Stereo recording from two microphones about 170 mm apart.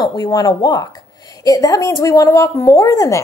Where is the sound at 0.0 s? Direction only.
25° left (ahead or behind).